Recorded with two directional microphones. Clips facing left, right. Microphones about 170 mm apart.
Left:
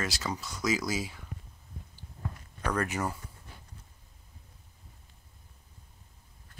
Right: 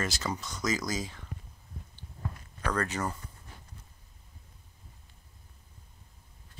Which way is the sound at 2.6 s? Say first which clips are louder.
Left 1 dB; 15° left (ahead or behind).